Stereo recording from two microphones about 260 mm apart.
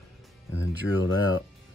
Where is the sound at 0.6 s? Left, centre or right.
Left.